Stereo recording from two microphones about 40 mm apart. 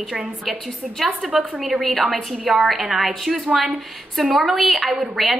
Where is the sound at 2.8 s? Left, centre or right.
Right.